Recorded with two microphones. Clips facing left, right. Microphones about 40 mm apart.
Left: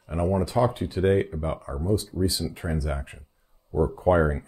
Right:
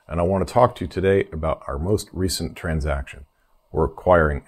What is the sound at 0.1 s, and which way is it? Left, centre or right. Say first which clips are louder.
Speech: right 5 dB; right.